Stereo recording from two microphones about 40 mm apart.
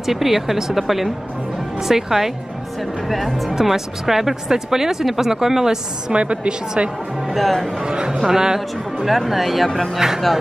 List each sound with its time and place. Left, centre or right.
0.0 s speech: centre
3.5 s speech: centre
6.1 s a woman's voice: right
7.3 s speech: centre
7.8 s a woman's voice: right
8.5 s speech: centre
9.9 s speech: centre